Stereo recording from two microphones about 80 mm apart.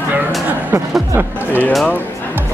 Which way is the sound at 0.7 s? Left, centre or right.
Right.